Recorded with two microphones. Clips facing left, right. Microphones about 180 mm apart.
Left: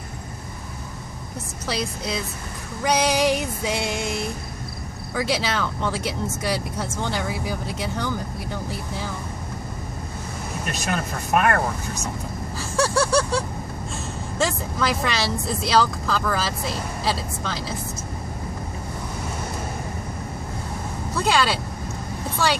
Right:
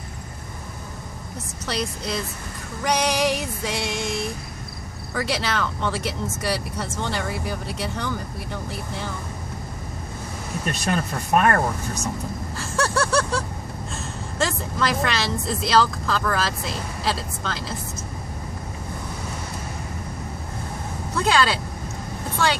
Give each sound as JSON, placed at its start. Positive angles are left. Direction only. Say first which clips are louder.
{"t": 1.7, "sound": "speech", "louder": "even", "side_deg": 0}
{"t": 10.9, "sound": "speech", "louder": "right 2 dB", "side_deg": -40}
{"t": 12.5, "sound": "a sound", "louder": "left 2 dB", "side_deg": 0}
{"t": 14.4, "sound": "speech", "louder": "even", "side_deg": 0}
{"t": 21.1, "sound": "speech", "louder": "right 1 dB", "side_deg": 5}